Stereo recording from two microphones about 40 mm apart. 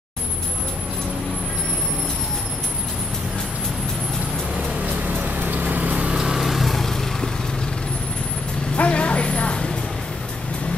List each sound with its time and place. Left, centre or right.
4.8 s vehicle: right
6.0 s vehicle: centre
8.7 s vehicle: left